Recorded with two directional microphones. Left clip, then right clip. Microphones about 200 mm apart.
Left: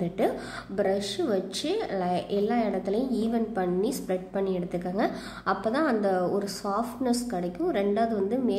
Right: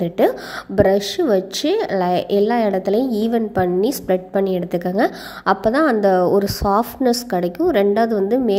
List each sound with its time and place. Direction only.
0.0 s a woman's voice: 40° right (ahead or behind)